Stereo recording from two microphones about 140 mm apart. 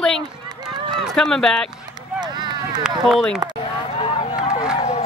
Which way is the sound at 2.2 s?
30° right (ahead or behind).